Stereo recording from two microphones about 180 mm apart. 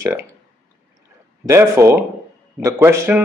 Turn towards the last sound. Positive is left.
turn(degrees=-15)  # may be behind; listen again after turning